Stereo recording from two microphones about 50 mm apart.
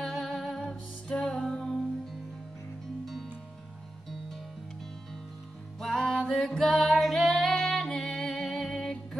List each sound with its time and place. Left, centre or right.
0.0 s music: centre
5.8 s music: centre
6.3 s music: left
6.6 s music: centre